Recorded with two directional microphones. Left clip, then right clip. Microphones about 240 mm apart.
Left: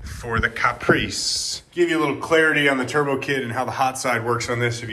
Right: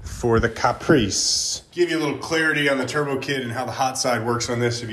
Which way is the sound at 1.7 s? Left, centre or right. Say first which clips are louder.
Left 2 dB; centre.